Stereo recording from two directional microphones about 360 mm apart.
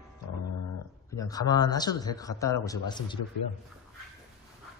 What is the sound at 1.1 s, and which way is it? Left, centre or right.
A man's voice, centre.